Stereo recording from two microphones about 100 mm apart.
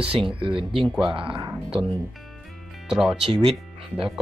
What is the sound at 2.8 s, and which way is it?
Speech, 5° right (ahead or behind).